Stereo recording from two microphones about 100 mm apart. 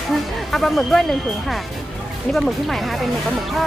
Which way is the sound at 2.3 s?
Centre (ahead or behind).